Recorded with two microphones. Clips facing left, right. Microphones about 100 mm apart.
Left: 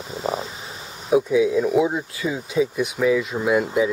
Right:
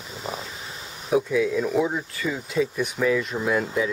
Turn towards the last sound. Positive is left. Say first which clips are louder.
# left 4 dB
turn(degrees=15)  # may be behind; listen again after turning